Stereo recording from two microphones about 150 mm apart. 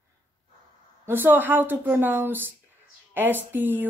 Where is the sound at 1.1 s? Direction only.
15° right (ahead or behind).